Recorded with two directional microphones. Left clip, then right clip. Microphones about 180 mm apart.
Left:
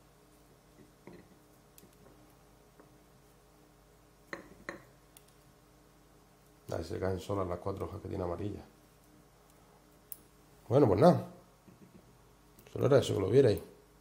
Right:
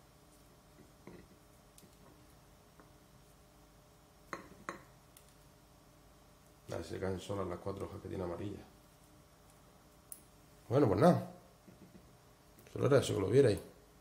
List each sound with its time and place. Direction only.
4.3 s a sound: centre (ahead or behind)
6.7 s speech: 35° left (ahead or behind)
10.8 s a man's voice: 15° left (ahead or behind)
12.6 s a man's voice: 15° left (ahead or behind)